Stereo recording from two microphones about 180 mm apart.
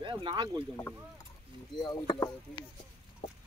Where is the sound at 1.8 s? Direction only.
20° left (ahead or behind).